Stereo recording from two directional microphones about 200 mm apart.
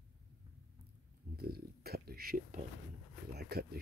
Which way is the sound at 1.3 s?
50° right (ahead or behind).